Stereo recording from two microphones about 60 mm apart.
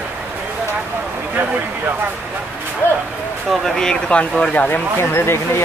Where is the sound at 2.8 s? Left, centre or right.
Left.